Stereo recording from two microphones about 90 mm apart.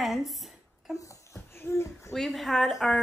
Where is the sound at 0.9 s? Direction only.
35° left (ahead or behind).